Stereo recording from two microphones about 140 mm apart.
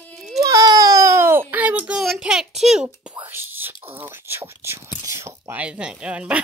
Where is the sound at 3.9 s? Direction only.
15° right (ahead or behind).